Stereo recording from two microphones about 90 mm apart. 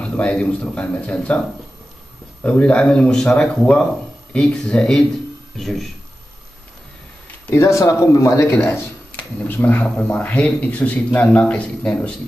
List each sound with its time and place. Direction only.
0.0 s speech: 10° left (ahead or behind)
2.4 s speech: 15° left (ahead or behind)
7.4 s speech: 30° left (ahead or behind)
9.1 s speech: 20° left (ahead or behind)